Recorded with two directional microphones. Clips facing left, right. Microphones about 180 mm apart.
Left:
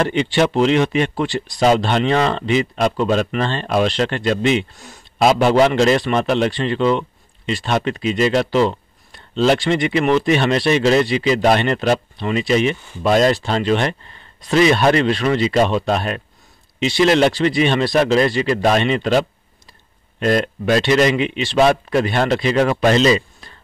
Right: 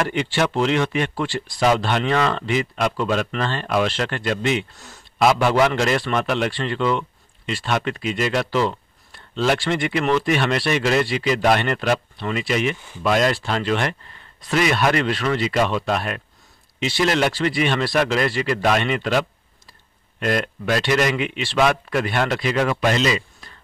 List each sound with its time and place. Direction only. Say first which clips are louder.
0.0 s speech: left 5 dB; 25° left (ahead or behind)